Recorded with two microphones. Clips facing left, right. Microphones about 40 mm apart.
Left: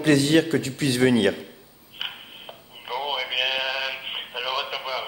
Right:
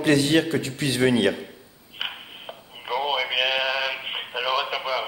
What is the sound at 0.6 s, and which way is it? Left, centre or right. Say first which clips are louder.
Speech: left 1 dB; right.